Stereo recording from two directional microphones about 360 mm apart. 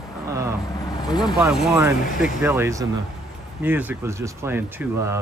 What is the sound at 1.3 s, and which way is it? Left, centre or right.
Speech, centre.